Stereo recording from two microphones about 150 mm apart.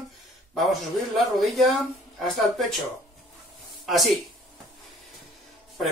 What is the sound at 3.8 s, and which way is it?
Speech, centre (ahead or behind).